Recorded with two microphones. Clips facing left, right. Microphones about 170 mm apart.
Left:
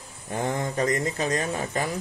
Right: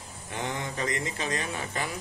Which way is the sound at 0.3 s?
45° left (ahead or behind).